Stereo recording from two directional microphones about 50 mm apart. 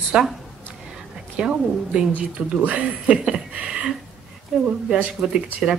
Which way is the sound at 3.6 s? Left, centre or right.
Centre.